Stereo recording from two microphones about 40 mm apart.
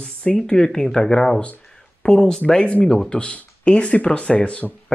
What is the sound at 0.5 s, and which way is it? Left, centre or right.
Speech, left.